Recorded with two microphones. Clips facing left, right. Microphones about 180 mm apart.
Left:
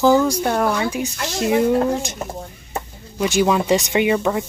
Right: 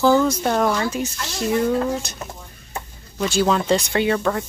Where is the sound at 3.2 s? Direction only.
15° left (ahead or behind).